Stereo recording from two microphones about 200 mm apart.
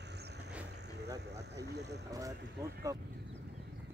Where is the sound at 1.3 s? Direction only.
55° right (ahead or behind).